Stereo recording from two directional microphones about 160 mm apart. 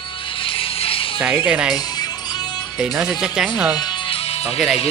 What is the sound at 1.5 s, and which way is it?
Speech, 5° right (ahead or behind).